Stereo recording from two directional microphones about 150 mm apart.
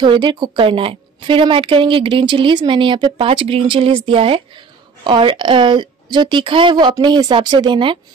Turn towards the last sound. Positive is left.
turn(degrees=-30)  # may be behind; listen again after turning